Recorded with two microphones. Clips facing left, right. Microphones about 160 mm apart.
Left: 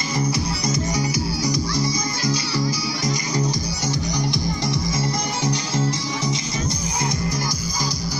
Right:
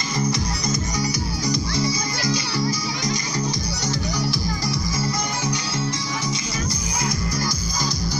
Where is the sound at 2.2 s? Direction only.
60° right (ahead or behind).